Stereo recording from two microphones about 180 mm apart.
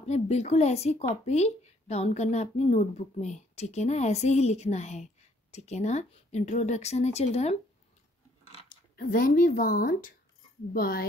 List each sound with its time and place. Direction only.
0.0 s a woman's voice: 35° left (ahead or behind)
8.9 s a woman's voice: 50° left (ahead or behind)